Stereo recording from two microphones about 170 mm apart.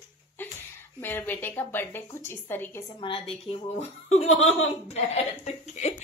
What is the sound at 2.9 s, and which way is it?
A woman's voice, 30° left (ahead or behind).